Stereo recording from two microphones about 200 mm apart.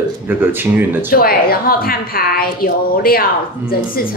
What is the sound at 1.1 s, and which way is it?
A woman's voice, 50° left (ahead or behind).